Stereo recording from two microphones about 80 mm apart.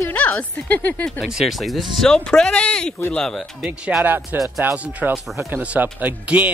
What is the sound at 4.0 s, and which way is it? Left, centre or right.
Speech, right.